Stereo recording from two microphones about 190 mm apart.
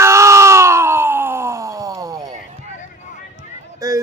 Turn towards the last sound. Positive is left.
turn(degrees=-20)  # may be behind; listen again after turning